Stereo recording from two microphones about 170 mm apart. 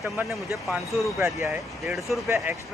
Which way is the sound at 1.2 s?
10° right (ahead or behind).